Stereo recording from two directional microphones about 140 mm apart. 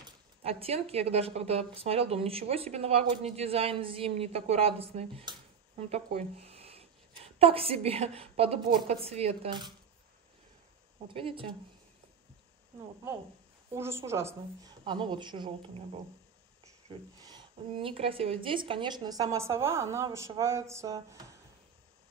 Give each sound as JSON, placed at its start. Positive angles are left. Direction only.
{"t": 0.4, "sound": "a woman's voice", "side_deg": -45}
{"t": 11.1, "sound": "a woman's voice", "side_deg": -40}
{"t": 13.7, "sound": "a woman's voice", "side_deg": -20}